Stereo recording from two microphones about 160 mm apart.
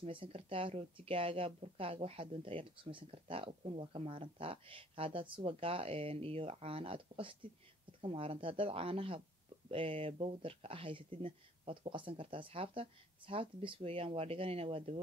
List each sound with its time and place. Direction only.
0.0 s speech: 35° right (ahead or behind)